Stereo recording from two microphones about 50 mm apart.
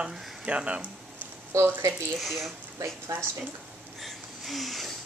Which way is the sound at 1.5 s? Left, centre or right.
Right.